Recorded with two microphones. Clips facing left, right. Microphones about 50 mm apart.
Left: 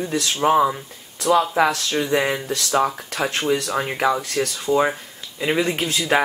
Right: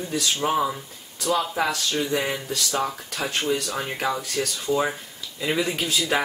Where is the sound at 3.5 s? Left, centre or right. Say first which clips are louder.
Left 5 dB; left.